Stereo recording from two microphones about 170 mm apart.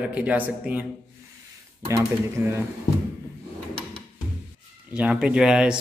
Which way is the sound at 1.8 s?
15° right (ahead or behind).